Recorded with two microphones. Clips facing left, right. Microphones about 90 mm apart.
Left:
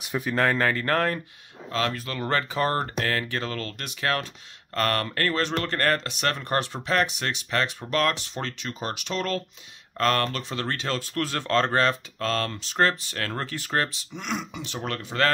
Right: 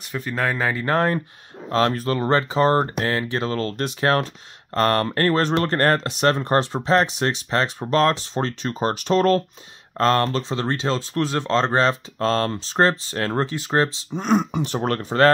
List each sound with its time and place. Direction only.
0.0 s speech: 10° left (ahead or behind)
0.3 s speech: 5° right (ahead or behind); by 1.2 s 25° right (ahead or behind)
1.7 s speech: 35° right (ahead or behind)
9.9 s speech: 30° right (ahead or behind)